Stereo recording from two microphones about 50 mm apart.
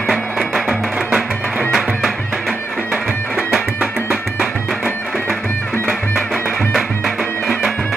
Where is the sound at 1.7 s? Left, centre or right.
Centre.